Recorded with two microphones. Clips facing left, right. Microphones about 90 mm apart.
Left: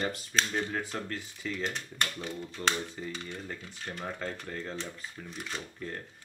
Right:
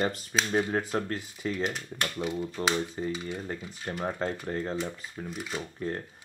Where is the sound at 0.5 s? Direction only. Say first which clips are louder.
Right 6 dB; 40° right (ahead or behind).